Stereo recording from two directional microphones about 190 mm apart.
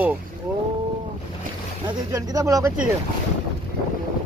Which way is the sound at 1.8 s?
20° right (ahead or behind).